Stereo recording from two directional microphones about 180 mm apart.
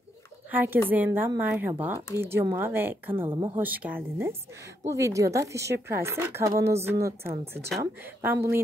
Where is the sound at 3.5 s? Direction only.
10° right (ahead or behind).